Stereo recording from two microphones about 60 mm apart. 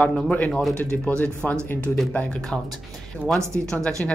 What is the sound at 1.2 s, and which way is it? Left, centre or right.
Speech, left.